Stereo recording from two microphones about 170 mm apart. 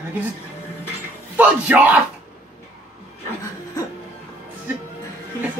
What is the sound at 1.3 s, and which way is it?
Speech, 10° right (ahead or behind).